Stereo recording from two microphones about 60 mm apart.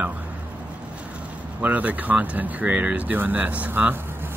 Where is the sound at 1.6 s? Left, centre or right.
Right.